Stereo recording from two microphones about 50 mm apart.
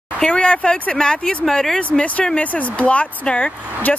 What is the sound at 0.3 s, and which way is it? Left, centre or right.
Speech, left.